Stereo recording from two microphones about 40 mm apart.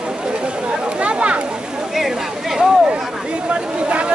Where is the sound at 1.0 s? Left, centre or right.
Right.